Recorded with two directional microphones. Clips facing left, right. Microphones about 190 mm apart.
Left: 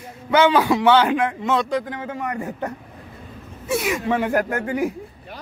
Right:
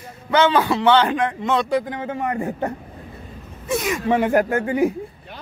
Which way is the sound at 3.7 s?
10° left (ahead or behind).